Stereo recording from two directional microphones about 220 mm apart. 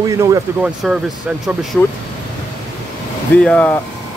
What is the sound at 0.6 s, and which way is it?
Speech, 5° right (ahead or behind).